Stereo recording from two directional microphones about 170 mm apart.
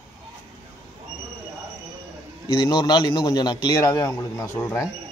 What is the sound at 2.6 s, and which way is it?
A man's voice, 25° left (ahead or behind).